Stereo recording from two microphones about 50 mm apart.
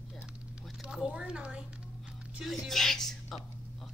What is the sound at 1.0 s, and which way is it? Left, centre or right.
Speech, centre.